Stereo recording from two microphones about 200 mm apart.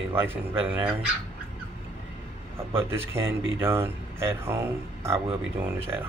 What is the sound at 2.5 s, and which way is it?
Speech, 10° right (ahead or behind).